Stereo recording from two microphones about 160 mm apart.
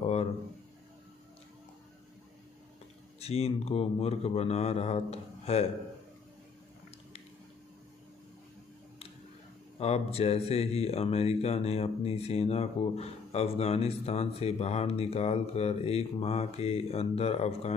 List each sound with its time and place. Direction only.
0.0 s a sound: 40° left (ahead or behind)
3.2 s speech: 40° left (ahead or behind)
9.8 s speech: 40° left (ahead or behind)